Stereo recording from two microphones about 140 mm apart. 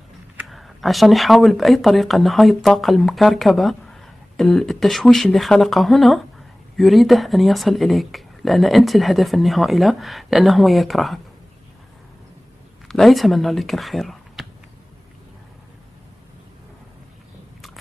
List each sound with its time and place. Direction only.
0.5 s speech: centre (ahead or behind)
12.8 s speech: centre (ahead or behind)